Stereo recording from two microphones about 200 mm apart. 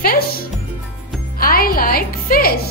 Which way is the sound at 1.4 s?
45° left (ahead or behind).